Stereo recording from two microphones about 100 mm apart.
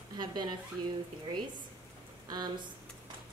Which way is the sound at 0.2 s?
45° right (ahead or behind).